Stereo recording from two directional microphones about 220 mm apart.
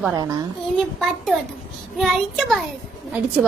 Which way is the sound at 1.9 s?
Centre (ahead or behind).